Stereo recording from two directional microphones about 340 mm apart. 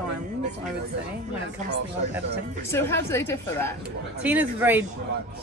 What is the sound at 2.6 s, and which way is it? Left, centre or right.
A woman's voice, centre.